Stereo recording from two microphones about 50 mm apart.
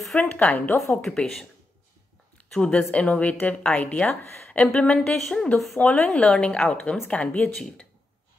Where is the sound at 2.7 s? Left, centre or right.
Left.